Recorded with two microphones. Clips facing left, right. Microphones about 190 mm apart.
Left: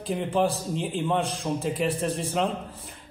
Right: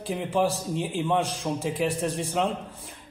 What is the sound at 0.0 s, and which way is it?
A man's voice, 5° right (ahead or behind).